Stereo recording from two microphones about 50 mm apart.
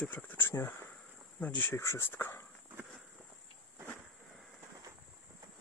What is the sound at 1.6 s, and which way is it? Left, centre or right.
Speech, left.